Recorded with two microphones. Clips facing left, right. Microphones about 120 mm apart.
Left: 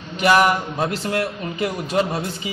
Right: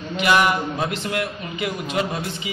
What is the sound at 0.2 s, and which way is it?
A man's voice, 35° left (ahead or behind).